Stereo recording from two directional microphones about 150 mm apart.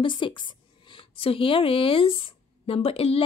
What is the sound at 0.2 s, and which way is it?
A woman's voice, 30° left (ahead or behind).